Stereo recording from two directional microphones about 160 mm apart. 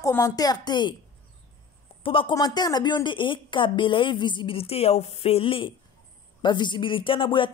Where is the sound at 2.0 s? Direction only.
35° left (ahead or behind).